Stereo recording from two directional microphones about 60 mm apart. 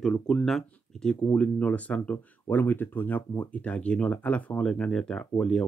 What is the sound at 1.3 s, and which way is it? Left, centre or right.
Speech, left.